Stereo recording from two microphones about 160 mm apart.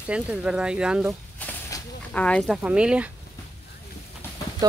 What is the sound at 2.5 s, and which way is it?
Speech, 5° right (ahead or behind).